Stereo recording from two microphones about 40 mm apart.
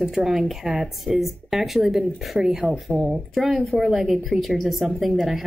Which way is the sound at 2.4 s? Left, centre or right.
Centre.